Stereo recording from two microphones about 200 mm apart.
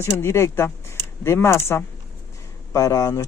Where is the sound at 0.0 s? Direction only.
15° left (ahead or behind).